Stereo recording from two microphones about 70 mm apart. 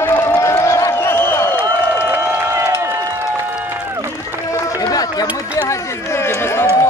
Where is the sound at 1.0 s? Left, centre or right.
Left.